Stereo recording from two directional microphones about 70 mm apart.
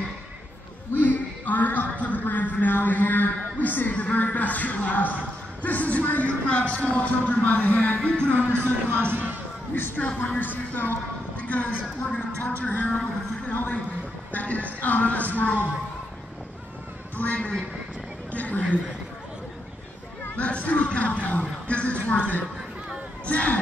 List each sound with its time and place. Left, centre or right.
0.9 s a man's voice: left
8.4 s speech: right
9.8 s a woman's voice: left
17.2 s a woman's voice: left
20.3 s a woman's voice: centre
23.2 s a woman's voice: left